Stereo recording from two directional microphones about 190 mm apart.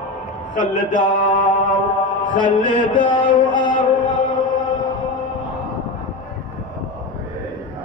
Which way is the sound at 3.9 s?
25° left (ahead or behind).